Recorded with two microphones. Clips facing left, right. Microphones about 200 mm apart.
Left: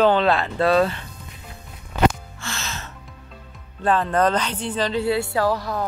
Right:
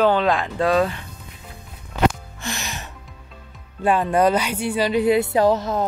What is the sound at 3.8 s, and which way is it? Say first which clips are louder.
Speech: right 2 dB; 10° right (ahead or behind).